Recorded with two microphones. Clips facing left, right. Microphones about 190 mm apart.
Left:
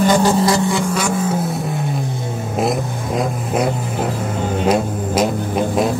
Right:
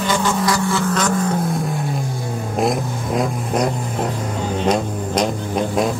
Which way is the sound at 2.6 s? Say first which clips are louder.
Even; centre (ahead or behind).